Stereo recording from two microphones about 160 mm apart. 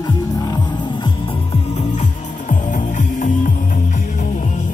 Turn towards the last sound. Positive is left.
turn(degrees=55)  # may be behind; listen again after turning